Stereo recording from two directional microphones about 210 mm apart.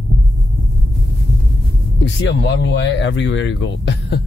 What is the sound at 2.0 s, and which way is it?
Speech, 55° left (ahead or behind).